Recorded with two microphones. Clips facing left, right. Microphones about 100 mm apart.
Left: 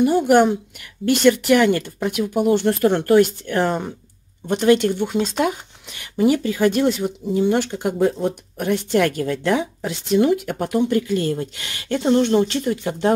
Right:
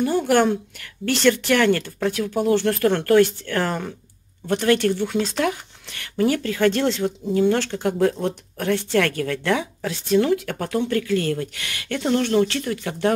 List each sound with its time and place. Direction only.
0.0 s speech: 15° left (ahead or behind)